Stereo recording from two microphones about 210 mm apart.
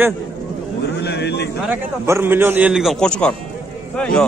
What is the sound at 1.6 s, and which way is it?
A man's voice, 10° right (ahead or behind).